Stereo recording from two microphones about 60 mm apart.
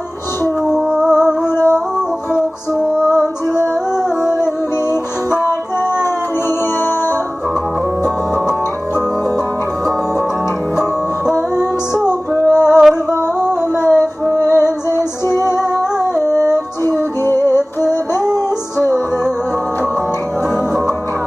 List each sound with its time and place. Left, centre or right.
0.7 s music: centre
1.5 s music: left
2.0 s music: centre
11.3 s female singing: left
12.4 s music: left